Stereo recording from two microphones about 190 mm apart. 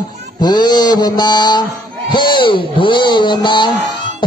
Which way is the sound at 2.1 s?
25° left (ahead or behind).